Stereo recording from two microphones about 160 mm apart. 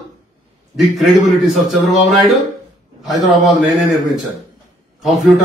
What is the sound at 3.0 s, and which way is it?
Speech, centre (ahead or behind).